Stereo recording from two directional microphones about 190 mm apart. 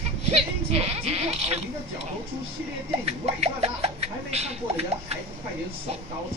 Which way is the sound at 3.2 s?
30° right (ahead or behind).